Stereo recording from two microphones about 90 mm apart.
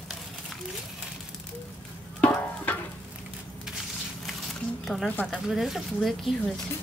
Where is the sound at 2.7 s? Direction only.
15° left (ahead or behind).